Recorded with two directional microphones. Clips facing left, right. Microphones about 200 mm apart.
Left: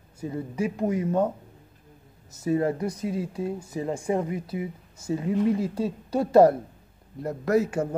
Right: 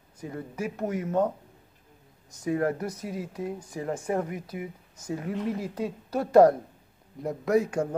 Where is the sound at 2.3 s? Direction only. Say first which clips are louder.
Left 2 dB; 5° left (ahead or behind).